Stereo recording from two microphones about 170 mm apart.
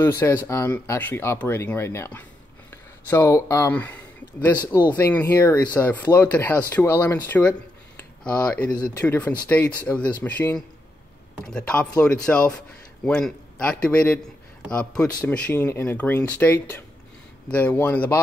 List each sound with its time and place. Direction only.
0.0 s speech: 15° left (ahead or behind)